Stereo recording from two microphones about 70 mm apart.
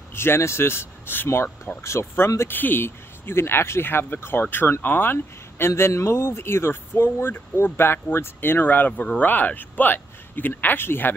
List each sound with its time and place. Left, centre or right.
0.1 s speech: left